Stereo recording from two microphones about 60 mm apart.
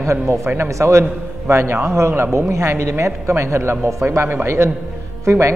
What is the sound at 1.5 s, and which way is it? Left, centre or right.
A man's voice, right.